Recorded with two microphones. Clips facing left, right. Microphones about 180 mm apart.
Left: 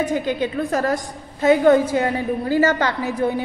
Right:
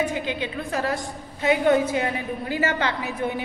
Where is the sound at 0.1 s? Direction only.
45° left (ahead or behind).